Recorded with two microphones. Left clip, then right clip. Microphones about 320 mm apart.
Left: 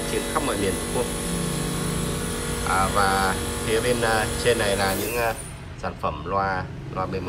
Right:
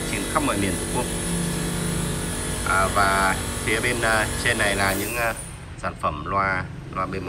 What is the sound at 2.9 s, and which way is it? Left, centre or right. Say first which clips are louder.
A man's voice: right 1 dB; centre.